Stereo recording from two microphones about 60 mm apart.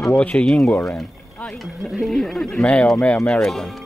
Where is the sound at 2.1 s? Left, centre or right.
Centre.